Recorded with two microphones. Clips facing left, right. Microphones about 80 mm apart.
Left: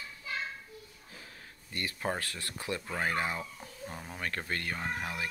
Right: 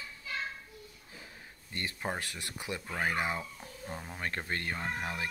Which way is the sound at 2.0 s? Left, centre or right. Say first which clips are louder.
Left 3 dB; centre.